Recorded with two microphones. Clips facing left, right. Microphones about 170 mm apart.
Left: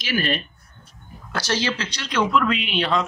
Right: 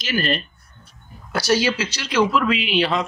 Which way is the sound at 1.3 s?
10° right (ahead or behind).